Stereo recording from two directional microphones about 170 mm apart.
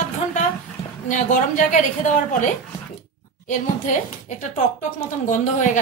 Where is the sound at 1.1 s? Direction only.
50° left (ahead or behind).